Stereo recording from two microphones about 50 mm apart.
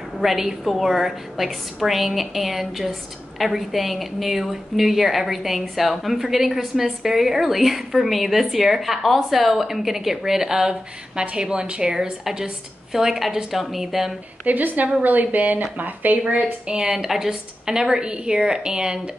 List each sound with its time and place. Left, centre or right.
0.2 s a woman's voice: centre
14.4 s speech: right
16.9 s a woman's voice: centre